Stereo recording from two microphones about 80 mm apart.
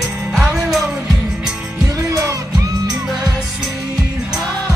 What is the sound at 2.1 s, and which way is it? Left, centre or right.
Music, right.